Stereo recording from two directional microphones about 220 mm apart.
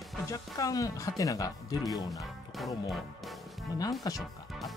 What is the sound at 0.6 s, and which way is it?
Speech, 15° left (ahead or behind).